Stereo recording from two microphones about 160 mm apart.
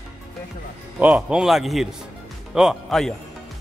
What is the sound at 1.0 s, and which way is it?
A man's voice, 5° right (ahead or behind).